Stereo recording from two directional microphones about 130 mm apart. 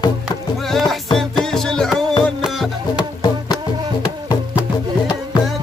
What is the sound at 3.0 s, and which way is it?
Music, 35° left (ahead or behind).